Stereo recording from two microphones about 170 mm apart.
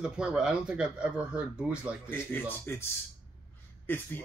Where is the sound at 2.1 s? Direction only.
10° left (ahead or behind).